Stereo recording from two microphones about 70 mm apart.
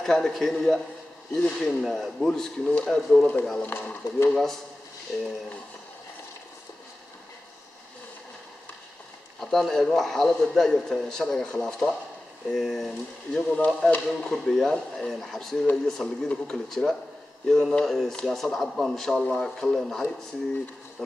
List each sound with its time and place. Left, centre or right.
0.0 s speech: centre
1.8 s speech: centre
3.6 s speech: left
4.3 s speech: centre
9.4 s speech: centre